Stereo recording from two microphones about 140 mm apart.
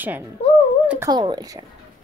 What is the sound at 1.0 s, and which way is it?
Speech, 30° right (ahead or behind).